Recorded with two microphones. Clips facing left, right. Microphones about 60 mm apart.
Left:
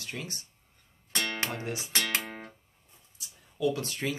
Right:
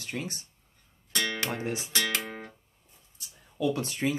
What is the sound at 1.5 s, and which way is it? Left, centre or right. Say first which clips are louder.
Speech: right 3 dB; right.